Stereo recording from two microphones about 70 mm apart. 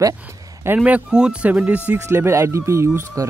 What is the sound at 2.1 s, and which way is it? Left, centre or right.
Speech, right.